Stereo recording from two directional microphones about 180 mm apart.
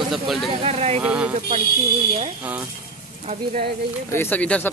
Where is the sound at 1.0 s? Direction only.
5° right (ahead or behind).